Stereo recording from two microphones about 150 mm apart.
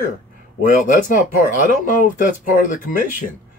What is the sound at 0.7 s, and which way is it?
Speech, 60° left (ahead or behind).